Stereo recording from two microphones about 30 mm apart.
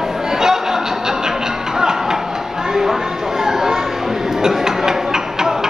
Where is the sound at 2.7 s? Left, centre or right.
Centre.